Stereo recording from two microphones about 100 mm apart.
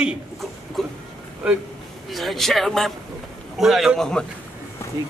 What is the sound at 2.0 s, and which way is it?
A man's voice, centre (ahead or behind).